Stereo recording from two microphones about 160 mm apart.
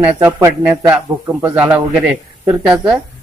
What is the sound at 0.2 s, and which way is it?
Speech, 15° right (ahead or behind).